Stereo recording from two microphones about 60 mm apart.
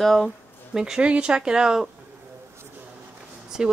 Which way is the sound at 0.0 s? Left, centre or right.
Centre.